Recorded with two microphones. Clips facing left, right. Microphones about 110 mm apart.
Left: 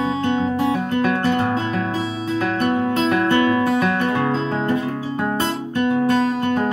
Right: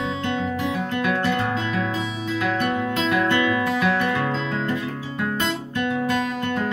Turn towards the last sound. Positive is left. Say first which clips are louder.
# left 5 dB
turn(degrees=30)  # may be behind; listen again after turning